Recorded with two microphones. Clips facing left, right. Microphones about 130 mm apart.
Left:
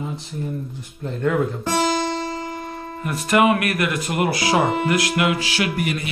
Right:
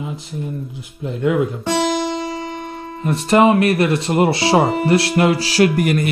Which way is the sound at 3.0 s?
25° right (ahead or behind).